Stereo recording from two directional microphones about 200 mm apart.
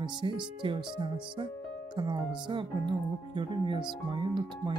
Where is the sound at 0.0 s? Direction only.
25° right (ahead or behind).